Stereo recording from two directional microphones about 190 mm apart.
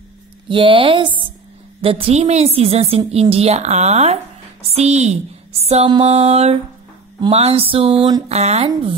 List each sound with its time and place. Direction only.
0.5 s a woman's voice: 25° right (ahead or behind)